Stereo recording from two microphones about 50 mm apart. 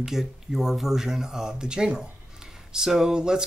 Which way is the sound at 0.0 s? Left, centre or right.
Centre.